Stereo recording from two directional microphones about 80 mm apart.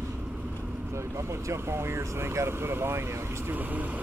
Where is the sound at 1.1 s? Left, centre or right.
Right.